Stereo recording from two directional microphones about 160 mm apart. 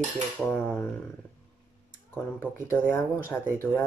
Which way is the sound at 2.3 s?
15° left (ahead or behind).